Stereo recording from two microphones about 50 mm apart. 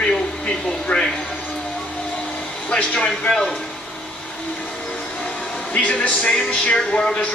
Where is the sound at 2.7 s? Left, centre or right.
Centre.